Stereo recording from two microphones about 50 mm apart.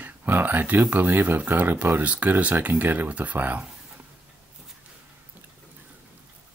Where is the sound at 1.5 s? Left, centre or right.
Right.